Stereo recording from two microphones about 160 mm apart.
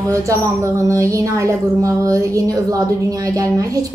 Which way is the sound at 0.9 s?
20° right (ahead or behind).